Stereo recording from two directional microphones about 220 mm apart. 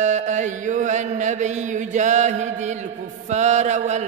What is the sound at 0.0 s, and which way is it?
Mantra, 30° right (ahead or behind).